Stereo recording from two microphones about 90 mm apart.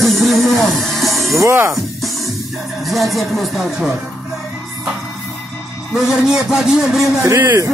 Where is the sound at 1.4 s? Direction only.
30° right (ahead or behind).